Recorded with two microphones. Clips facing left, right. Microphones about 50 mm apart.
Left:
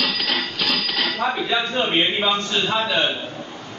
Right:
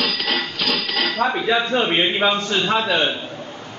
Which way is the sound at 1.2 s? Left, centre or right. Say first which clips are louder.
Right 4 dB; right.